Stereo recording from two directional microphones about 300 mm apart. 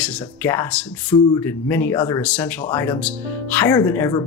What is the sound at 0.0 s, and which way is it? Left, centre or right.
Speech, centre.